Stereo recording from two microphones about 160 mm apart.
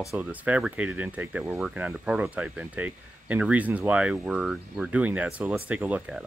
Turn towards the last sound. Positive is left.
turn(degrees=-10)  # may be behind; listen again after turning